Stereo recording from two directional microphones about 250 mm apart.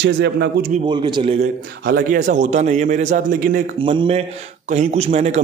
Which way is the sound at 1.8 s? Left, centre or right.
Right.